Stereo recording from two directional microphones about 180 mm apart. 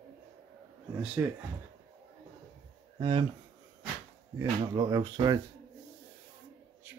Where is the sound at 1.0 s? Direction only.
10° right (ahead or behind).